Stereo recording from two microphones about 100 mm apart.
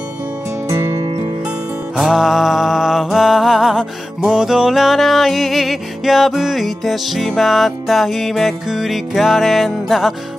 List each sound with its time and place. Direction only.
0.7 s music: 30° right (ahead or behind)
2.0 s music: 5° right (ahead or behind)